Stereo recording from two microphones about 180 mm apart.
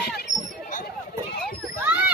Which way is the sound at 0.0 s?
55° left (ahead or behind).